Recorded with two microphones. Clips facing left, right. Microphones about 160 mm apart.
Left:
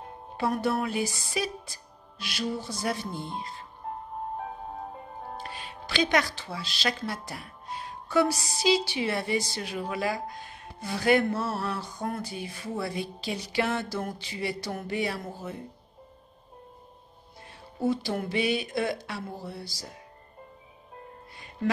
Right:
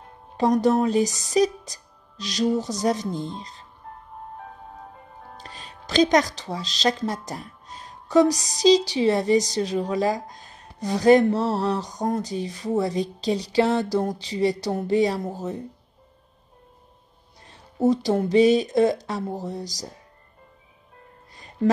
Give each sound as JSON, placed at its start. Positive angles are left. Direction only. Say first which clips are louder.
{"t": 0.4, "sound": "a woman's voice", "louder": "right 8 dB", "side_deg": -40}
{"t": 4.7, "sound": "music", "louder": "left 4 dB", "side_deg": 35}
{"t": 5.5, "sound": "a woman's voice", "louder": "right 5 dB", "side_deg": -40}
{"t": 17.5, "sound": "a woman's voice", "louder": "right 7 dB", "side_deg": -40}